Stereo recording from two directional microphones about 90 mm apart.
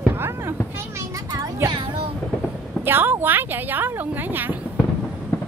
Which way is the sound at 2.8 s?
25° right (ahead or behind).